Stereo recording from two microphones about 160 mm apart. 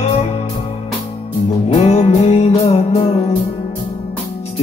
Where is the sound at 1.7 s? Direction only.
40° left (ahead or behind).